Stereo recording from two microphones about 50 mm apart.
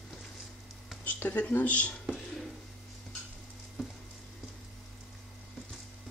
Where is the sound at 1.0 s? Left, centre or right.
Left.